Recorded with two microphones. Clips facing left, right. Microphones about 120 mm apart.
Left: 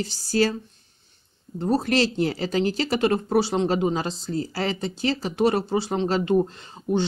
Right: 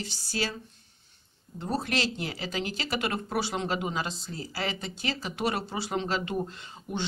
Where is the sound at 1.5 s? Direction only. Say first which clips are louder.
Left 8 dB; 40° left (ahead or behind).